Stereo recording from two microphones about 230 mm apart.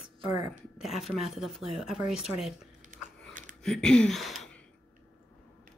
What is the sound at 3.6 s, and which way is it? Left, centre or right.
Speech, centre.